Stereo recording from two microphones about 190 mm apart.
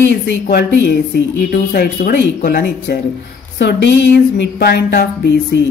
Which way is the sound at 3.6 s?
65° left (ahead or behind).